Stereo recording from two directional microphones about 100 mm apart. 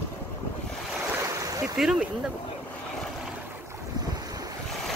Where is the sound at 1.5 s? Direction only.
40° right (ahead or behind).